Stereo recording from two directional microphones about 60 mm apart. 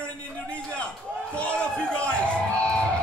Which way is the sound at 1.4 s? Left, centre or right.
Centre.